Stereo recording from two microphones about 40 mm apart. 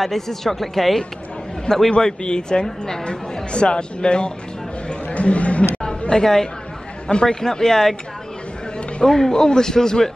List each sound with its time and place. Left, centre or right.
0.0 s speech: centre
1.7 s speech: centre
4.8 s chatter: left
5.8 s a sound: centre
7.1 s a man's voice: centre
9.0 s a man's voice: centre